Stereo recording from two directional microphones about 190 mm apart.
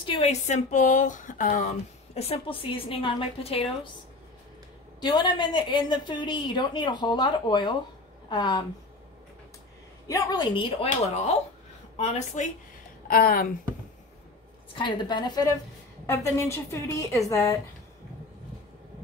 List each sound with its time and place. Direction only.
0.0 s speech: 30° left (ahead or behind); by 1.7 s 45° left (ahead or behind)
2.1 s a woman's voice: 30° left (ahead or behind)
5.0 s a woman's voice: 25° left (ahead or behind)
10.0 s a woman's voice: 15° left (ahead or behind)
12.0 s speech: 35° left (ahead or behind)
13.1 s speech: 50° left (ahead or behind)
14.8 s a woman's voice: 25° left (ahead or behind)